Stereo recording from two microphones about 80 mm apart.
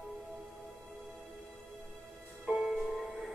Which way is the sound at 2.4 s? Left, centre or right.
Centre.